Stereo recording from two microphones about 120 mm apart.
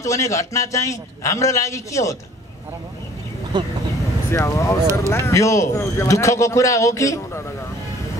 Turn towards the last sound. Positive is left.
turn(degrees=25)  # may be behind; listen again after turning